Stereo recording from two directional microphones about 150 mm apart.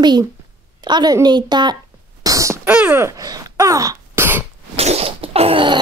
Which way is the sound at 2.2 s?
20° right (ahead or behind).